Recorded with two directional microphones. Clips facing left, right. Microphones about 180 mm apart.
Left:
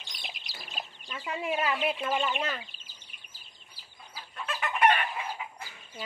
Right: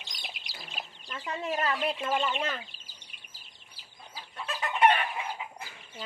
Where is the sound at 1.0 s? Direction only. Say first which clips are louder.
Left 1 dB; 10° left (ahead or behind).